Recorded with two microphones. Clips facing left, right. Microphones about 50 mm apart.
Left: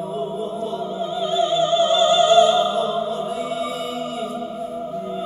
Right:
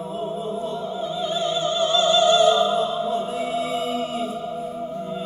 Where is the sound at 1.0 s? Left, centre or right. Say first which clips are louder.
Left 5 dB; centre.